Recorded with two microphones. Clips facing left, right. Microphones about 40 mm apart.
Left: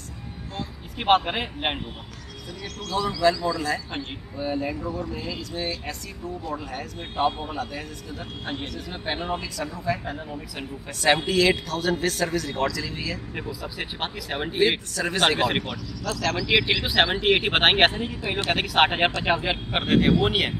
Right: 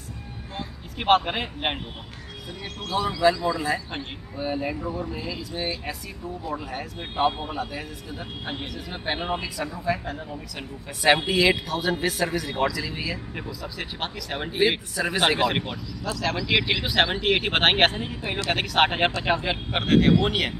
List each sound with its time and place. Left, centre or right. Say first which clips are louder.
0.9 s speech: even; centre
2.9 s speech: right 1 dB; centre
10.0 s speech: left 1 dB; centre
11.0 s speech: right 1 dB; centre
13.3 s speech: left 1 dB; centre